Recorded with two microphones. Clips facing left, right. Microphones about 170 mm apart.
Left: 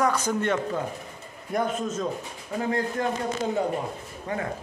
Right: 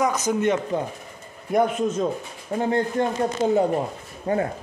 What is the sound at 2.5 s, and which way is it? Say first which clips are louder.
Speech: right 4 dB; 35° right (ahead or behind).